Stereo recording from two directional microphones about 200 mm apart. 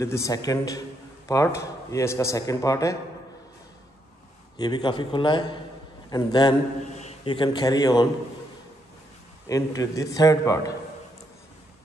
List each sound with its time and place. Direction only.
0.0 s a man's voice: 15° left (ahead or behind)
4.6 s a man's voice: 20° left (ahead or behind)
9.5 s a man's voice: 15° left (ahead or behind)